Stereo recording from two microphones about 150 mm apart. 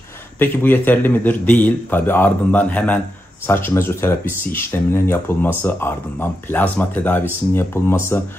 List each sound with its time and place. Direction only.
0.4 s a man's voice: 15° left (ahead or behind)